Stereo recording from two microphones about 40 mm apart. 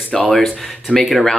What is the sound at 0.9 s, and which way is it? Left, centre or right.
Speech, left.